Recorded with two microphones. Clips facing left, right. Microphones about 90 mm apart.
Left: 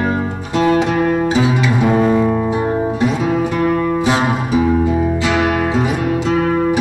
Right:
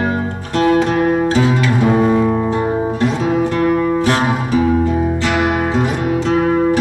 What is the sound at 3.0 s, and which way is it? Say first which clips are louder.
Music: even; 10° left (ahead or behind).